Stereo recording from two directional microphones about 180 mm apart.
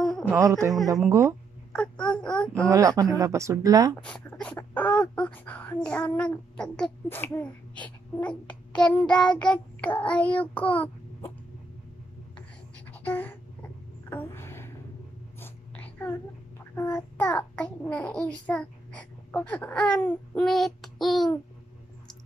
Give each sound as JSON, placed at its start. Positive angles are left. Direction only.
{"t": 0.3, "sound": "speech", "side_deg": -15}
{"t": 1.7, "sound": "speech", "side_deg": 5}
{"t": 2.5, "sound": "speech", "side_deg": -20}
{"t": 4.0, "sound": "speech", "side_deg": 5}
{"t": 12.9, "sound": "a sound", "side_deg": 10}
{"t": 16.7, "sound": "a child's voice", "side_deg": 15}